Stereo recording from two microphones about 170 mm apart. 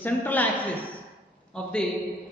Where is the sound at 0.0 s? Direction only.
10° left (ahead or behind).